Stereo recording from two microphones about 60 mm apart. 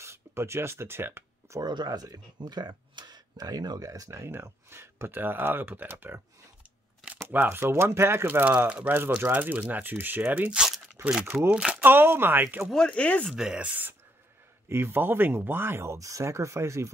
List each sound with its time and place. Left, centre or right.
0.0 s speech: right
1.6 s speech: right
3.3 s speech: right
4.1 s speech: right
7.2 s speech: right
11.0 s a sound: right
11.5 s speech: centre
11.8 s speech: right
12.7 s speech: centre
13.3 s speech: centre
13.6 s speech: right
14.7 s speech: right
16.0 s speech: right